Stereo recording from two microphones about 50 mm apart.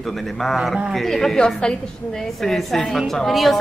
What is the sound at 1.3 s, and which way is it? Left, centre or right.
Speech, centre.